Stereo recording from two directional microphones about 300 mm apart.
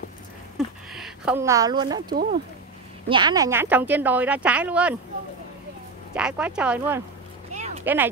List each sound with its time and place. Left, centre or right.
0.9 s a woman's voice: centre
6.1 s speech: centre
7.5 s a sound: right
7.8 s speech: centre